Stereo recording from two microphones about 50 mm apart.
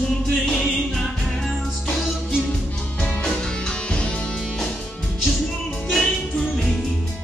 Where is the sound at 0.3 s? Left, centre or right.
Centre.